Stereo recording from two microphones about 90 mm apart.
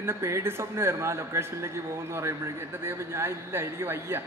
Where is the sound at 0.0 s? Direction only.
30° right (ahead or behind).